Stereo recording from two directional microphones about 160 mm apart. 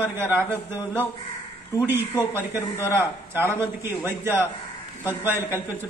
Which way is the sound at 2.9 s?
15° right (ahead or behind).